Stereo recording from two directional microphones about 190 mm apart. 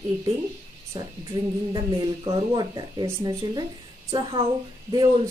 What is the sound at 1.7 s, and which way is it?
Speech, 25° right (ahead or behind).